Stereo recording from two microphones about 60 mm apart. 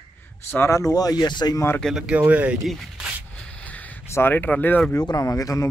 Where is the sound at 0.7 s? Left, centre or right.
Left.